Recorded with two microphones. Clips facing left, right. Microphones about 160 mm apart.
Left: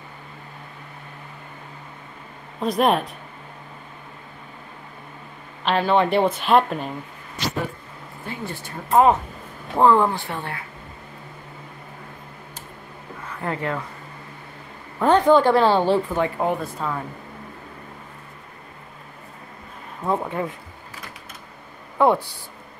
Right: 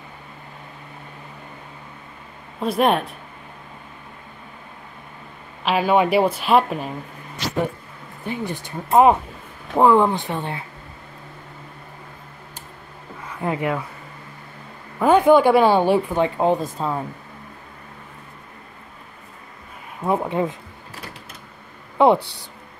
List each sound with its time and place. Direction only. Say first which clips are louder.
2.6 s speech: right 1 dB; centre (ahead or behind)
5.6 s speech: right 1 dB; 10° right (ahead or behind)
8.3 s speech: right 5 dB; 15° right (ahead or behind)
13.4 s speech: right 3 dB; 15° right (ahead or behind)
15.0 s speech: right 2 dB; 10° right (ahead or behind); by 16.9 s 30° right (ahead or behind)
20.0 s speech: right 3 dB; 15° right (ahead or behind)
21.9 s a sound: right 3 dB; 20° right (ahead or behind)